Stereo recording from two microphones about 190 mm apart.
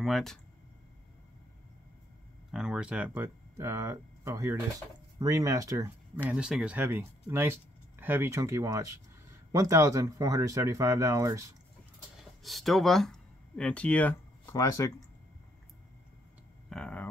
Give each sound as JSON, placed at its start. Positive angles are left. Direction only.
{"t": 0.0, "sound": "speech", "side_deg": 0}
{"t": 2.5, "sound": "speech", "side_deg": -5}
{"t": 6.2, "sound": "speech", "side_deg": -5}
{"t": 12.4, "sound": "speech", "side_deg": 0}
{"t": 16.6, "sound": "speech", "side_deg": 5}